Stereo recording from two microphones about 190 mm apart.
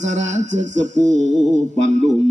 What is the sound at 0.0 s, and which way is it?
A man's voice, 40° right (ahead or behind).